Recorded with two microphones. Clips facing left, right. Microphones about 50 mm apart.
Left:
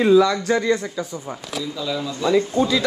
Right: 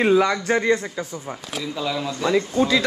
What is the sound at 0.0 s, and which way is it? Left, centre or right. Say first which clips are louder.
Speech: left 3 dB; right.